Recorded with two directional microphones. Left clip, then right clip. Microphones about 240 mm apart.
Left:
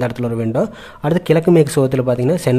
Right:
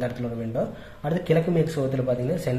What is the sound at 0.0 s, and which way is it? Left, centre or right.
Speech, left.